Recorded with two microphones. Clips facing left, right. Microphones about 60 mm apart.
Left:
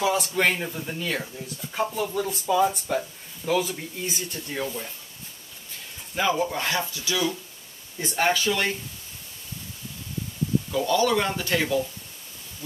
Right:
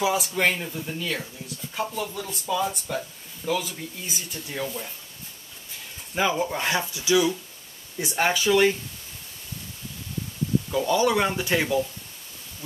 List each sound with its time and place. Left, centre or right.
0.0 s speech: centre
0.6 s speech: centre
4.0 s speech: centre
6.1 s speech: centre
10.9 s speech: centre